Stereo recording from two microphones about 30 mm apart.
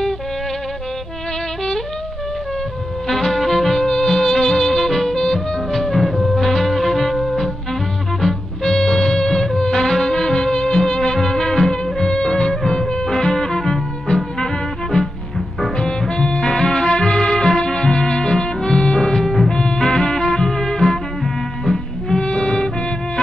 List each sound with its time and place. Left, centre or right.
3.1 s music: centre
19.2 s music: centre
19.9 s music: left
22.2 s music: left